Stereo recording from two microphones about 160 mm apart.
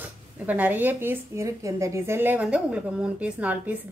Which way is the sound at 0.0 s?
10° right (ahead or behind).